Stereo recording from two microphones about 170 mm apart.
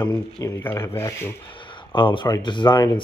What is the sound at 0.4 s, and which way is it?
Speech, 15° left (ahead or behind).